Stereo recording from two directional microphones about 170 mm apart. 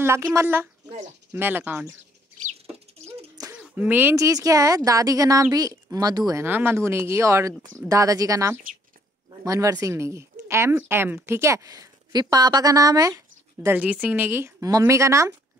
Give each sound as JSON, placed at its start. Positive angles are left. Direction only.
{"t": 0.0, "sound": "speech", "side_deg": -15}
{"t": 3.5, "sound": "a woman's voice", "side_deg": -5}
{"t": 13.7, "sound": "speech", "side_deg": -10}